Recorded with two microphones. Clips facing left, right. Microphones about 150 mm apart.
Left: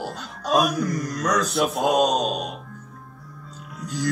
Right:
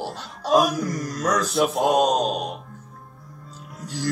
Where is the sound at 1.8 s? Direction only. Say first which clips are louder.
Even; 25° right (ahead or behind).